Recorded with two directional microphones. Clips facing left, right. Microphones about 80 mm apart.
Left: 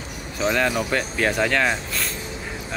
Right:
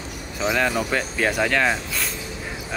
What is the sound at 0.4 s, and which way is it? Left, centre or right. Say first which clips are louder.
Speech: even; centre.